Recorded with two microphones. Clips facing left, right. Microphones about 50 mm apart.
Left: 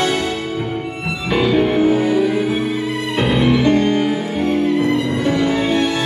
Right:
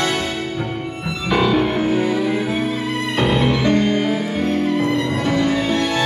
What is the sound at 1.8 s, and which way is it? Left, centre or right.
Music, centre.